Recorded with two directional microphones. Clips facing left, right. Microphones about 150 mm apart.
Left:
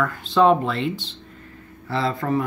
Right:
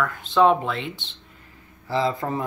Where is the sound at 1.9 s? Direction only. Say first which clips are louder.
Left 1 dB; 20° right (ahead or behind).